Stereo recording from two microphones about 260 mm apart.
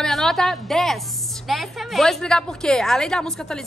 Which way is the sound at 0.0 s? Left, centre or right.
Centre.